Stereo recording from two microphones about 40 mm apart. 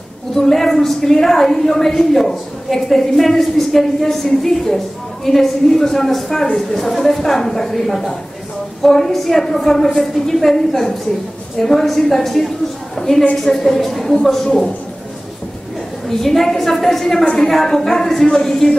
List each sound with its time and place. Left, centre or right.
0.4 s a woman's voice: centre
12.9 s a sound: centre
13.4 s a woman's voice: centre
16.1 s a woman's voice: centre
17.2 s a woman's voice: left
17.5 s a woman's voice: centre